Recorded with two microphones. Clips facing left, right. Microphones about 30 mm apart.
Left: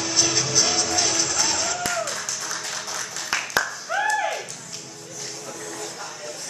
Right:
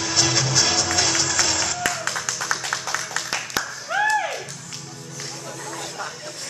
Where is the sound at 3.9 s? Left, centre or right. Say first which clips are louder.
Right 3 dB; right.